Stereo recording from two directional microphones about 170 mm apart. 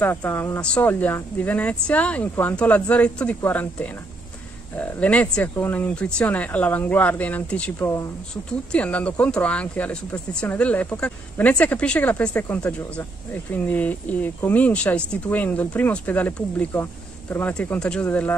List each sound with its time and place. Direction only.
0.0 s speech: 10° left (ahead or behind)